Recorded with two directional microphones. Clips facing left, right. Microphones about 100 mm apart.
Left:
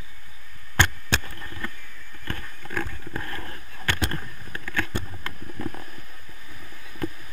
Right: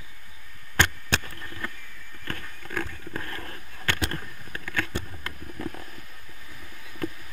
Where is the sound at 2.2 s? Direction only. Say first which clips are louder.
Left 1 dB; 30° left (ahead or behind).